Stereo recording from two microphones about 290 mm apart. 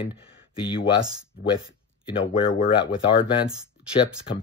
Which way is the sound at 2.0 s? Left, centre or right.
Centre.